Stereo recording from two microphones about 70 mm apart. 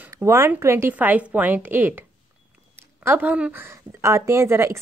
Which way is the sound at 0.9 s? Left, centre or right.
Right.